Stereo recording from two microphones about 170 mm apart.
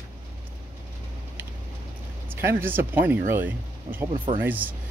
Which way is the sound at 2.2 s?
15° right (ahead or behind).